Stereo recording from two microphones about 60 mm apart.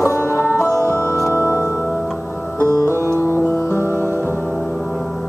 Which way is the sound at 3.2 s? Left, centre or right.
Left.